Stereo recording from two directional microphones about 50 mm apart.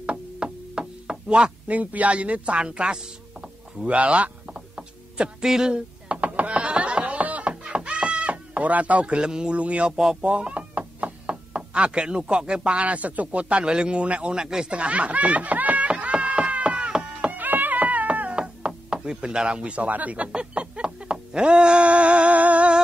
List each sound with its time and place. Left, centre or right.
0.0 s chop: right
4.6 s a sound: centre
10.2 s chop: right
11.5 s speech: right
14.4 s speech: centre
14.7 s snicker: right
17.3 s cat: right
18.4 s chopping: centre